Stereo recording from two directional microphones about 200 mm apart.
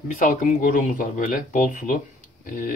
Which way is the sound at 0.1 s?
40° left (ahead or behind).